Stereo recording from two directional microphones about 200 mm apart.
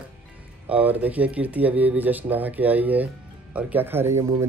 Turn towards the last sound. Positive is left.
turn(degrees=-15)  # may be behind; listen again after turning